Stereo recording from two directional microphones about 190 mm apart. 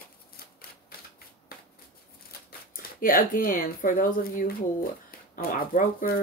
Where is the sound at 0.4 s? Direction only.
55° left (ahead or behind).